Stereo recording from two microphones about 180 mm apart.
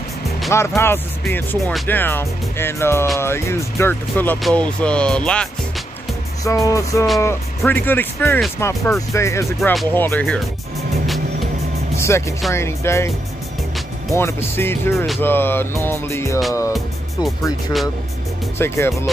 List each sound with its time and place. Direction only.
0.5 s speech: 15° left (ahead or behind)
6.4 s speech: 15° left (ahead or behind)
9.6 s speech: centre (ahead or behind)
9.8 s speech: 10° left (ahead or behind)
12.0 s speech: 15° left (ahead or behind)
14.1 s speech: 15° left (ahead or behind)
18.6 s speech: 15° left (ahead or behind)